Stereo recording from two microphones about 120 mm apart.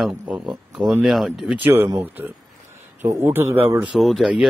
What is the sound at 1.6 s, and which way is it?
A man's voice, 20° right (ahead or behind).